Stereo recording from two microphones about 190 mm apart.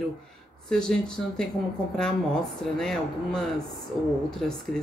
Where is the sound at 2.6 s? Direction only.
5° left (ahead or behind).